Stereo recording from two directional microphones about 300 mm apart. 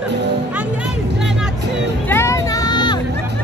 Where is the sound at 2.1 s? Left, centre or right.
Centre.